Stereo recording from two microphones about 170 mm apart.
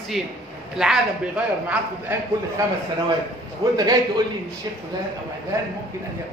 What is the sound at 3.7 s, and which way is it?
Speech, 20° right (ahead or behind).